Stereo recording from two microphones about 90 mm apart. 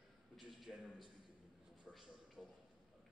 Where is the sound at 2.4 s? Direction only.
Centre (ahead or behind).